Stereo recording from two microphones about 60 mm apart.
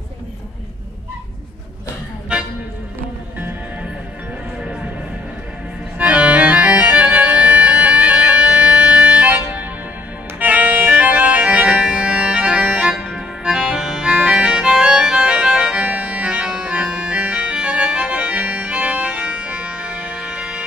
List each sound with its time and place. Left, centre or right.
2.3 s music: centre
5.9 s accordion: right
10.4 s music: right
13.0 s accordion: centre
14.7 s music: centre